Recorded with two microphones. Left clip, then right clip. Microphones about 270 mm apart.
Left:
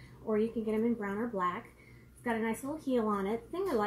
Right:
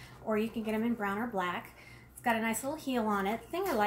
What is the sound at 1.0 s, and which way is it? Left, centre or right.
A woman's voice, centre.